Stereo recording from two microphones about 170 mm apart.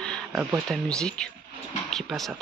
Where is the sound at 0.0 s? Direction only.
5° left (ahead or behind).